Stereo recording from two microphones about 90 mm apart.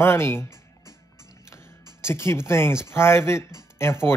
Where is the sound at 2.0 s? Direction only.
30° left (ahead or behind).